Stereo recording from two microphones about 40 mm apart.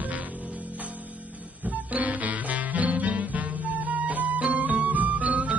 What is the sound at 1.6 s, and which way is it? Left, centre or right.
Music, right.